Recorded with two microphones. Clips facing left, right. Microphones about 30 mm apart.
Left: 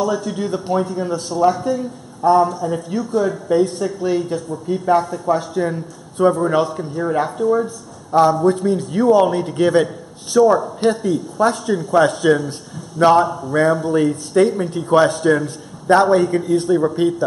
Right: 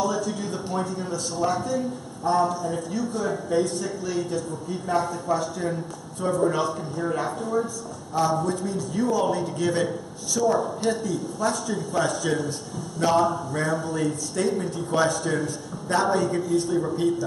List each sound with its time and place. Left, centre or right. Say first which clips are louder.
0.2 s a man's voice: left 6 dB; left
3.4 s a man's voice: left 7 dB; left
7.2 s a man's voice: left 11 dB; centre
7.5 s a man's voice: left 6 dB; left